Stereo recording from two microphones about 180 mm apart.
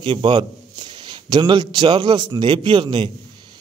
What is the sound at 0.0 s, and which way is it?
A man's voice, 25° right (ahead or behind).